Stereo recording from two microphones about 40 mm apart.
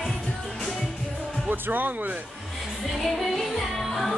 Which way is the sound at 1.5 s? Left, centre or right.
Right.